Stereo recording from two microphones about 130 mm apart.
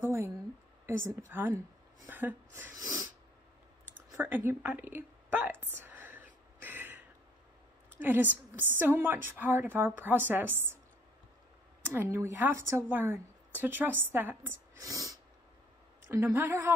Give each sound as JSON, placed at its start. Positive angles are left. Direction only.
{"t": 0.0, "sound": "a sound", "side_deg": -20}
{"t": 0.8, "sound": "a woman's voice", "side_deg": -20}
{"t": 2.7, "sound": "snort", "side_deg": -25}
{"t": 3.9, "sound": "a sound", "side_deg": -15}
{"t": 8.0, "sound": "speech", "side_deg": -15}
{"t": 11.8, "sound": "a woman's voice", "side_deg": -15}